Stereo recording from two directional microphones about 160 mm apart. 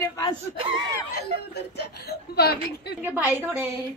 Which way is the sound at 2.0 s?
80° left.